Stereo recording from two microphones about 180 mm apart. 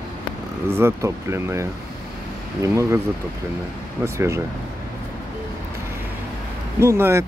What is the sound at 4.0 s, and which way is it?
Speech, 15° right (ahead or behind).